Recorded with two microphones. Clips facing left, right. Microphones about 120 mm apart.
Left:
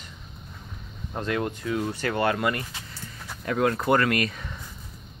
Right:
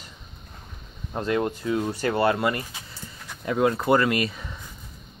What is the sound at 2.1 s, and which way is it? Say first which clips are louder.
Speech: right 3 dB; 30° right (ahead or behind).